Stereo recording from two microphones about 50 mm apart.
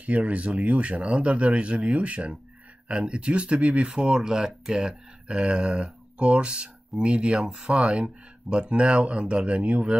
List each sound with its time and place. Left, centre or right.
0.0 s speech: right